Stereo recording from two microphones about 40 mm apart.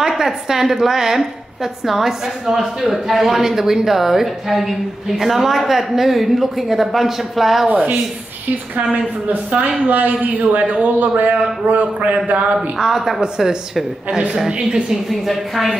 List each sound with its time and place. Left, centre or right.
0.2 s a woman's voice: centre
7.7 s speech: right
9.8 s a man's voice: right
12.7 s a woman's voice: centre
14.5 s a woman's voice: right
15.0 s a woman's voice: centre